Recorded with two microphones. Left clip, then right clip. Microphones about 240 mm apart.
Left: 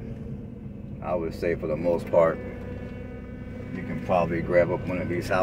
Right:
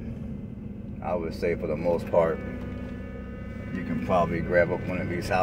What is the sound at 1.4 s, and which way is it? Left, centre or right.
Speech, centre.